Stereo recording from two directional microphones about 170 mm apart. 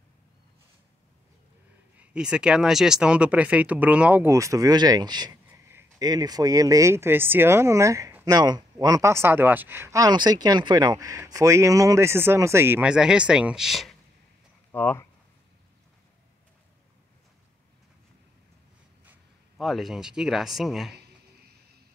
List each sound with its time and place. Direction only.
2.0 s speech: 5° right (ahead or behind); by 5.3 s 25° right (ahead or behind)
5.5 s speech: 15° right (ahead or behind)
14.7 s speech: 15° left (ahead or behind)
19.6 s speech: centre (ahead or behind)